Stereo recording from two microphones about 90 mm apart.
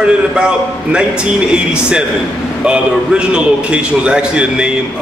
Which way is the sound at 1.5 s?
10° right (ahead or behind).